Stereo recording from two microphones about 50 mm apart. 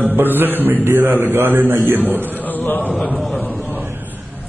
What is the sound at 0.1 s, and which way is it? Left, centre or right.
A man's voice, right.